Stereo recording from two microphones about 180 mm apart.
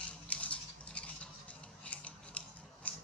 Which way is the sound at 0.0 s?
5° left (ahead or behind).